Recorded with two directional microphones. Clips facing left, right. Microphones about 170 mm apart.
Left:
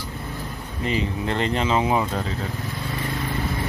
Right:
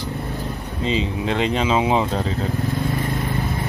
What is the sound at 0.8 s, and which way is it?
Speech, 20° right (ahead or behind).